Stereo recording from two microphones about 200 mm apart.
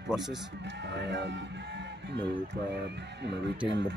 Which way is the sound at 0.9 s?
60° right (ahead or behind).